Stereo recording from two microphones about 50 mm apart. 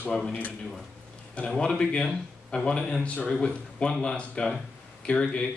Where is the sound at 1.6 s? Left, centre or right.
Centre.